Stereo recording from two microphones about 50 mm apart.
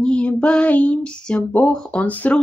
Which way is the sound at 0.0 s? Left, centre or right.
Left.